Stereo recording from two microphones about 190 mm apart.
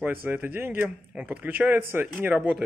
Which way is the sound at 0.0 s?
10° right (ahead or behind).